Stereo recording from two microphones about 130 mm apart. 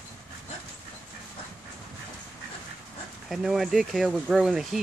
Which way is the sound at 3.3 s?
Centre (ahead or behind).